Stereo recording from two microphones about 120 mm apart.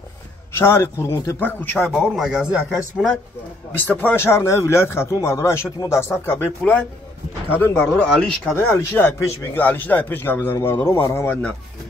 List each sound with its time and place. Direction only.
0.6 s speech: 20° left (ahead or behind)
1.4 s a man's voice: 15° left (ahead or behind)
1.8 s speech: 5° left (ahead or behind)
3.8 s speech: 15° left (ahead or behind)
8.5 s a man's voice: 15° left (ahead or behind)